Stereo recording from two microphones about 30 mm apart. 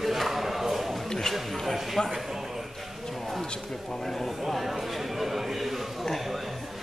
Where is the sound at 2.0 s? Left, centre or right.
Left.